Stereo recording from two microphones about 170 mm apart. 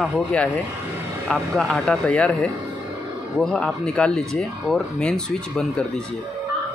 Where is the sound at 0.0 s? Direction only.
5° left (ahead or behind).